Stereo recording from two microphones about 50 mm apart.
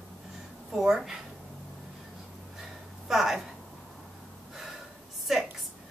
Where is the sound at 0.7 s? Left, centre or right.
Centre.